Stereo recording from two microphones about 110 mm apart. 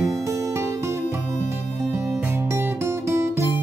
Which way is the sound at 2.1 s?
25° right (ahead or behind).